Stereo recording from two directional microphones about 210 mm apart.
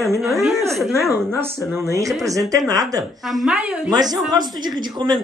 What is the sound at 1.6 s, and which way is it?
Speech, 10° right (ahead or behind).